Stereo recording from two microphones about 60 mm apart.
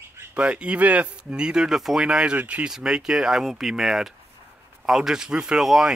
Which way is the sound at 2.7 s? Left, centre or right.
Centre.